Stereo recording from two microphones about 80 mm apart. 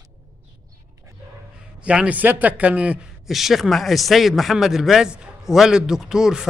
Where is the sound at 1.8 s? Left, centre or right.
Centre.